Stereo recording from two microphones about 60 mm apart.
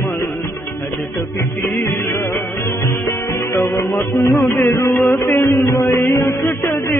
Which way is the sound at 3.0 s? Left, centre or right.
Left.